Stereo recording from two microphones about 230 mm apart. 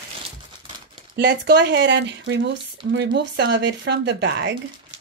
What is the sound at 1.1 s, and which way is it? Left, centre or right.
Speech, right.